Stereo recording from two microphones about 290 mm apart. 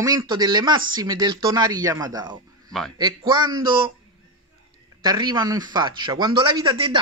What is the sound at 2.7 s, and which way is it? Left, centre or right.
Speech, centre.